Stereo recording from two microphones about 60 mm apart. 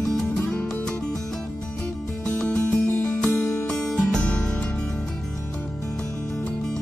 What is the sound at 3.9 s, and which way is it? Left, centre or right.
Music, centre.